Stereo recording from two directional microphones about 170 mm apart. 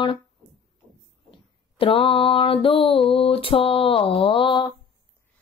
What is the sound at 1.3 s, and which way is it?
Mantra, 35° left (ahead or behind).